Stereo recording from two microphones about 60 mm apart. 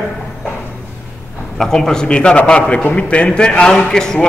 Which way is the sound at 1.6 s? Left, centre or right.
Centre.